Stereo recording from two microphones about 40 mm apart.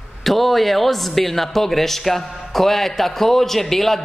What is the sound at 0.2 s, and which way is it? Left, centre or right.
Speech, centre.